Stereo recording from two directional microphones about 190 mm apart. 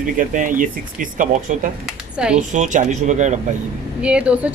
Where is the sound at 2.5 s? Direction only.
40° right (ahead or behind).